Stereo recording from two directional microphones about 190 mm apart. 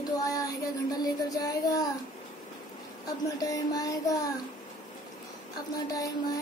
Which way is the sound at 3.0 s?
20° left (ahead or behind).